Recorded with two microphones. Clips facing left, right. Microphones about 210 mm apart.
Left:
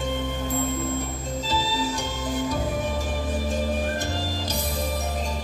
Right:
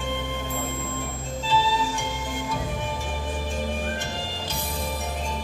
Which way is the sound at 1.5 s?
40° left (ahead or behind).